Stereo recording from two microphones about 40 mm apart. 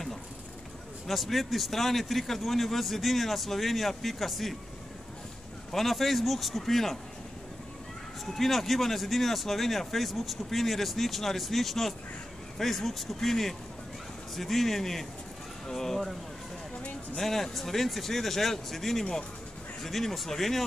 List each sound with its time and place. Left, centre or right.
1.0 s a man's voice: centre
5.7 s a man's voice: centre
8.4 s a man's voice: centre
17.2 s speech: centre